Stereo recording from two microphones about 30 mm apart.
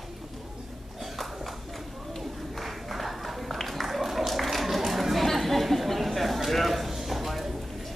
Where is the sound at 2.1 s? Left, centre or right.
Centre.